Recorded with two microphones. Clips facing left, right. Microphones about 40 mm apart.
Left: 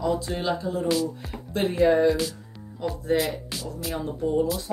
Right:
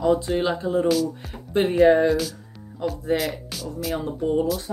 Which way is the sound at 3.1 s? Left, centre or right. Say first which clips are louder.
Left 2 dB; centre.